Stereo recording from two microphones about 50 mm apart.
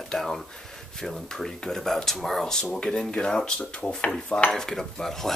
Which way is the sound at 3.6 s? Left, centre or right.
Left.